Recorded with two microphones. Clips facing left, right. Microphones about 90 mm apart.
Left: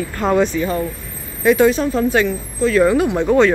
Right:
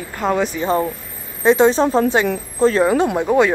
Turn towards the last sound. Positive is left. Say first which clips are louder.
# left 1 dB
turn(degrees=-10)  # may be behind; listen again after turning